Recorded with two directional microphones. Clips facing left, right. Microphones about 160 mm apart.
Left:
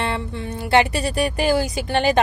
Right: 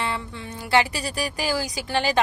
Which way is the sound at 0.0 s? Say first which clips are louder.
Left 4 dB; 55° left (ahead or behind).